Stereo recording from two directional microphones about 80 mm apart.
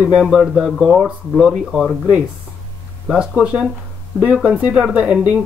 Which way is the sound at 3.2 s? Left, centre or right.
Centre.